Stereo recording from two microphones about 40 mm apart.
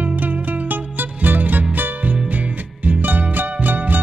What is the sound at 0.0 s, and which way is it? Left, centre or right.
Music, right.